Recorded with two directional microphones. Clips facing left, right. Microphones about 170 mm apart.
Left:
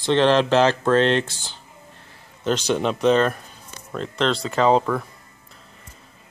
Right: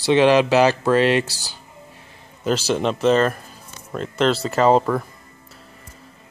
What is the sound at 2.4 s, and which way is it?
Speech, 5° right (ahead or behind).